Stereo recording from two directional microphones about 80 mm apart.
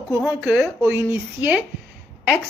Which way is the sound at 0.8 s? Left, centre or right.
Right.